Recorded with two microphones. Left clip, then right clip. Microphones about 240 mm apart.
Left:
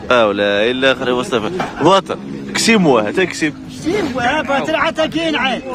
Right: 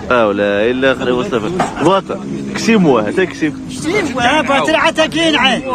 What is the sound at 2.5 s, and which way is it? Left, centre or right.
Speech, centre.